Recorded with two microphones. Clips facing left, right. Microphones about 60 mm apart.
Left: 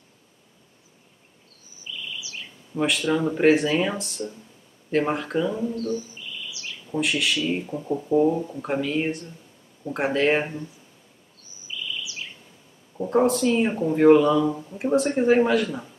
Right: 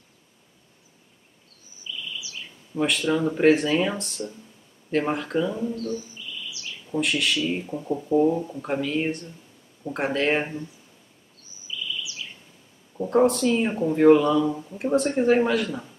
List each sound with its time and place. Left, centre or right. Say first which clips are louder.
2.7 s speech: even; centre
5.8 s speech: left 2 dB; left
6.9 s speech: even; centre
11.6 s bird vocalization: even; left
12.9 s speech: right 1 dB; centre